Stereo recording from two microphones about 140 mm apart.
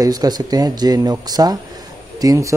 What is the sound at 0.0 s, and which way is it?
Speech, 30° right (ahead or behind).